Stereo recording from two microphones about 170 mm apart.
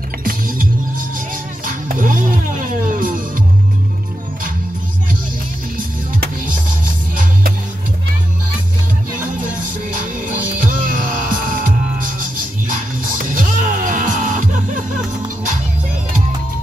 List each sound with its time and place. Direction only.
0.2 s music: 55° right (ahead or behind)
1.7 s music: 50° right (ahead or behind)
9.6 s music: 55° right (ahead or behind)